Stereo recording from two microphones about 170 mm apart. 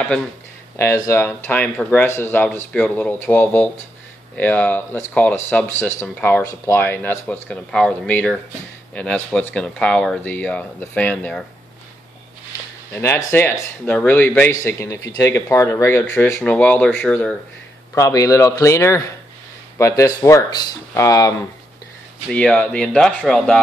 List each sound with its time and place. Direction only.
0.7 s speech: 15° left (ahead or behind)
12.9 s speech: 15° left (ahead or behind)
17.9 s speech: 20° left (ahead or behind)
22.3 s speech: 5° left (ahead or behind)